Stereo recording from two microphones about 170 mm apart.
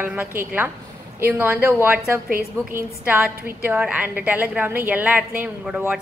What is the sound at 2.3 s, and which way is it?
Speech, 60° right (ahead or behind).